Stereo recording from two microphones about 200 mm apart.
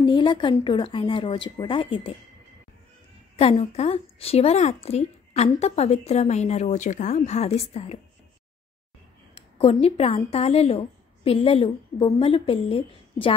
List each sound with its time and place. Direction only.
0.0 s speech: 25° left (ahead or behind)
3.3 s a woman's voice: 30° left (ahead or behind)
9.3 s a woman's voice: 30° left (ahead or behind)